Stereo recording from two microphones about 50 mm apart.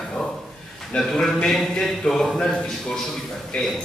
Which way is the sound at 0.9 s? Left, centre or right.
Left.